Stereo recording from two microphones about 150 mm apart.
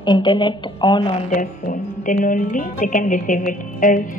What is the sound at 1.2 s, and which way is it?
Speech, 55° left (ahead or behind).